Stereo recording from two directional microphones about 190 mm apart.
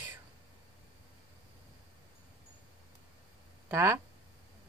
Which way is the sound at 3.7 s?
15° right (ahead or behind).